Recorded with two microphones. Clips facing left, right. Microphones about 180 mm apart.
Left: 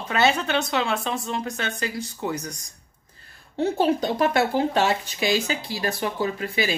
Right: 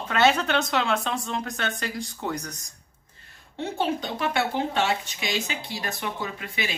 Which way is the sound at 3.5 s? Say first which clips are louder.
Left 6 dB; 40° left (ahead or behind).